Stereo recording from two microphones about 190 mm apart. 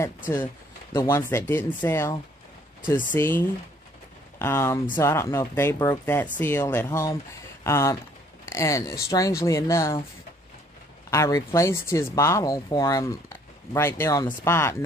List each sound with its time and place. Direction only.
0.9 s speech: 15° left (ahead or behind)
3.2 s speech: 10° left (ahead or behind)
11.1 s speech: 20° left (ahead or behind)